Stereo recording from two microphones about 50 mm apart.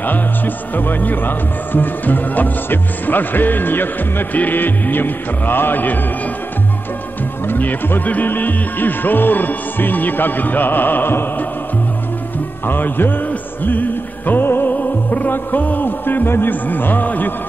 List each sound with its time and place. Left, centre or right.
0.7 s speech: left
7.4 s speech: left
12.6 s music: left
14.7 s speech: left